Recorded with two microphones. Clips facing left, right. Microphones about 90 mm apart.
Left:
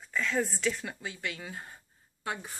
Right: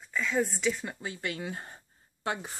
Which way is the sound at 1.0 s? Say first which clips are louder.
Right 3 dB; 40° right (ahead or behind).